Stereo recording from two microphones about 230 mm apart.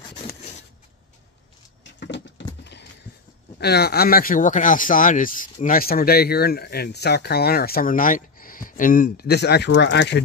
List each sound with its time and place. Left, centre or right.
2.0 s patter: left
2.6 s a sound: left
3.5 s speech: left